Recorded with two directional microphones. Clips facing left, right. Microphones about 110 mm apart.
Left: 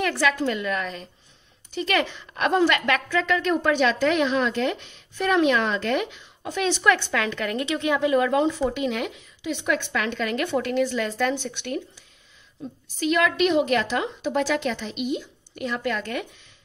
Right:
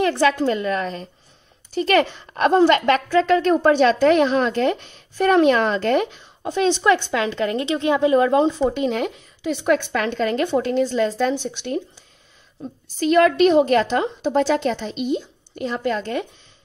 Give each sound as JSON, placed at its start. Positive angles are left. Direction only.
{"t": 0.0, "sound": "a woman's voice", "side_deg": -30}
{"t": 12.6, "sound": "a woman's voice", "side_deg": -40}